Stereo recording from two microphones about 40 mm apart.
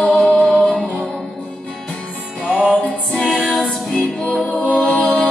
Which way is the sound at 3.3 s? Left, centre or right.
Centre.